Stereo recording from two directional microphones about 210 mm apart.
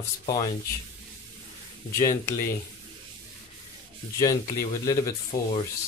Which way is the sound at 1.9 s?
15° left (ahead or behind).